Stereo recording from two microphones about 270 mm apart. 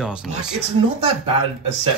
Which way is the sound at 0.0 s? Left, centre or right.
Centre.